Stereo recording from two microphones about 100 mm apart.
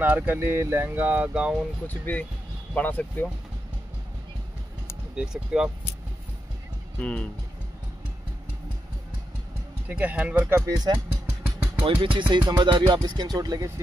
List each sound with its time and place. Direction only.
0.0 s speech: 15° right (ahead or behind)
1.9 s speech: 15° left (ahead or behind)
5.1 s speech: 10° right (ahead or behind)
7.0 s speech: 10° left (ahead or behind)
9.8 s speech: 15° right (ahead or behind)
10.7 s speech: 40° right (ahead or behind)
11.8 s speech: 60° right (ahead or behind); by 13.7 s 40° right (ahead or behind)